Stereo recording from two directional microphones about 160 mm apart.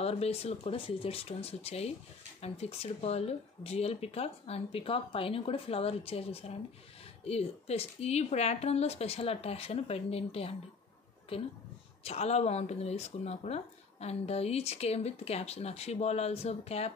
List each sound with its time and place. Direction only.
0.0 s speech: 40° left (ahead or behind)